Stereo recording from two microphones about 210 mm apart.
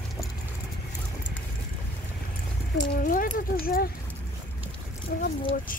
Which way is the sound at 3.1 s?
45° left (ahead or behind).